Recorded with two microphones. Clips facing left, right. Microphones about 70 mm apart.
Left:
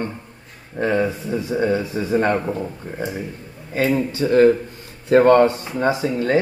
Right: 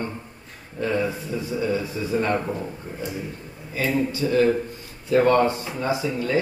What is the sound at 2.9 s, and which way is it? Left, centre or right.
Speech, left.